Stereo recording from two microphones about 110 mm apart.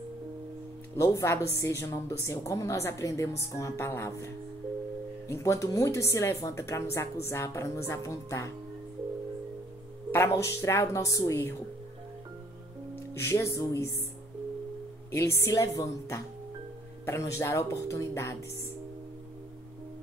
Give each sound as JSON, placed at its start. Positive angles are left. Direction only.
{"t": 0.9, "sound": "a woman's voice", "side_deg": 25}
{"t": 5.3, "sound": "a woman's voice", "side_deg": 30}
{"t": 10.1, "sound": "a woman's voice", "side_deg": 25}
{"t": 13.1, "sound": "a woman's voice", "side_deg": 25}
{"t": 15.0, "sound": "a woman's voice", "side_deg": 25}